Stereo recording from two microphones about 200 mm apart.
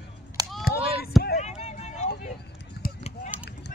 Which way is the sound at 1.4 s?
35° left (ahead or behind).